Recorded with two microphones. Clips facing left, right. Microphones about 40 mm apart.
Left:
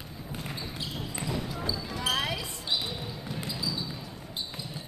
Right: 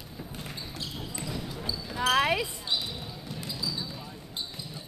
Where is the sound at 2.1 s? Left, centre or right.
Right.